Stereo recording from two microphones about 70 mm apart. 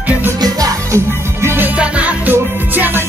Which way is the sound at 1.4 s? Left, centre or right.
Right.